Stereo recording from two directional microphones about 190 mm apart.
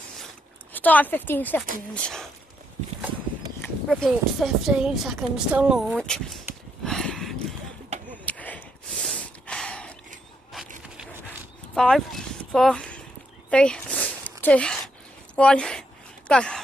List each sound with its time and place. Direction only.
0.7 s speech: 10° left (ahead or behind)
3.6 s speech: 5° left (ahead or behind)
7.9 s a sound: 35° right (ahead or behind)
8.3 s gasp: 10° left (ahead or behind)
11.2 s horse: 5° left (ahead or behind)
13.5 s a sound: 5° left (ahead or behind)
15.3 s speech: 5° left (ahead or behind)